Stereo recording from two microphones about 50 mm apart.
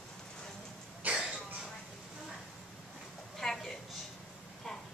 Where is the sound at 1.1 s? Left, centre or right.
Centre.